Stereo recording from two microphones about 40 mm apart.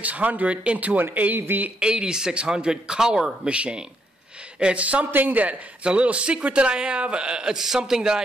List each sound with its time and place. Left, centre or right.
0.0 s speech: right
1.3 s speech: right
1.8 s a man's voice: right
3.4 s a man's voice: right
5.1 s a woman's voice: right
5.9 s a man's voice: right